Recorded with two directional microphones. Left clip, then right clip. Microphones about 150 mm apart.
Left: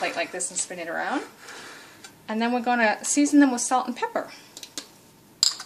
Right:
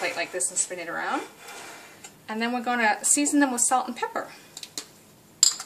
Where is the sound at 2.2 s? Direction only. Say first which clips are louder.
Left 3 dB; 35° left (ahead or behind).